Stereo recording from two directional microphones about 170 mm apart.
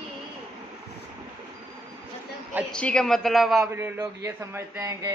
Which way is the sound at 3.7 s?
15° right (ahead or behind).